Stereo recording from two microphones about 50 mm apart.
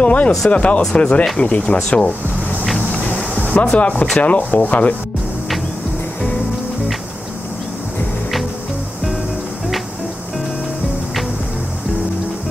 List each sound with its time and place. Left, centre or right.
0.0 s speech: left
1.8 s speech: centre
2.9 s a sound: left
3.5 s speech: left